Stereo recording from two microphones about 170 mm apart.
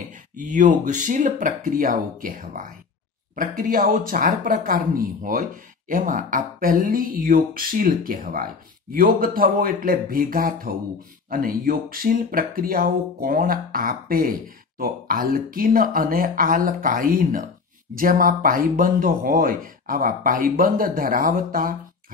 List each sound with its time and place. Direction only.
0.4 s speech: 50° right (ahead or behind)